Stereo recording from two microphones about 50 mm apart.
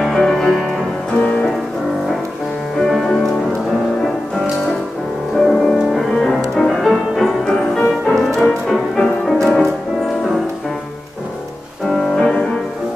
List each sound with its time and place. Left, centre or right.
0.2 s music: centre
2.8 s music: centre
5.4 s music: centre
12.0 s music: centre